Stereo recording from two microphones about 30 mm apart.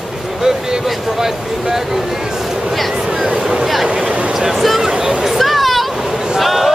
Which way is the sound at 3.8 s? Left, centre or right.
Centre.